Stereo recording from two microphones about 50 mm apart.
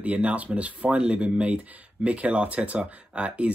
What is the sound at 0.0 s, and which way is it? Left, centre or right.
Speech, right.